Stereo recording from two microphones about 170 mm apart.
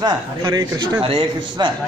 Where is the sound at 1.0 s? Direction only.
30° right (ahead or behind).